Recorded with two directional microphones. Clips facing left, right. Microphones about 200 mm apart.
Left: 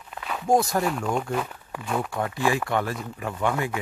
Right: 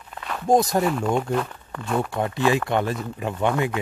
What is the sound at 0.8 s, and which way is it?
Speech, centre (ahead or behind).